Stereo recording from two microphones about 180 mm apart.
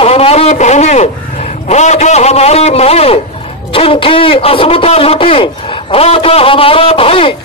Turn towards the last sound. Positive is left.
turn(degrees=30)  # may be behind; listen again after turning